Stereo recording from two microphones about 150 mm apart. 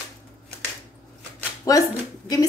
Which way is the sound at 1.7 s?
25° left (ahead or behind).